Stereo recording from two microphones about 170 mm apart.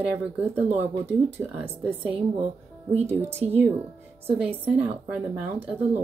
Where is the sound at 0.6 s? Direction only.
40° right (ahead or behind).